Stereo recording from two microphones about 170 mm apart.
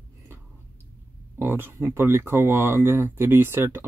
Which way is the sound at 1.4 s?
10° right (ahead or behind).